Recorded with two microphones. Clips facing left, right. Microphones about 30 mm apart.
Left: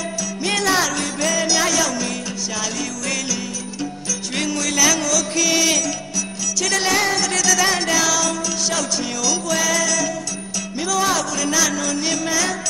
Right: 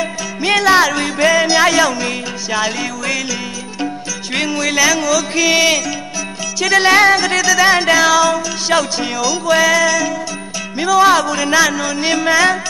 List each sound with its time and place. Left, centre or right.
0.4 s music: right
4.4 s music: right